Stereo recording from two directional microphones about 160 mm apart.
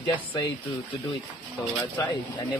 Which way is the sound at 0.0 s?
30° left (ahead or behind).